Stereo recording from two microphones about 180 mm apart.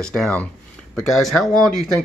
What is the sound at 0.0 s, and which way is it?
Speech, 5° left (ahead or behind).